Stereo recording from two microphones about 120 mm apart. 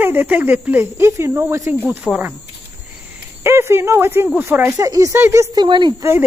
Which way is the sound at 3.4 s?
20° right (ahead or behind).